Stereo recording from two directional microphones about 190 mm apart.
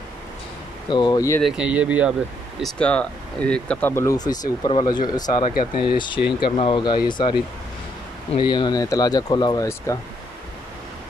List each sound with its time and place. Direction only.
0.8 s speech: 25° left (ahead or behind)
1.4 s speech: 5° right (ahead or behind)
2.6 s speech: 5° left (ahead or behind)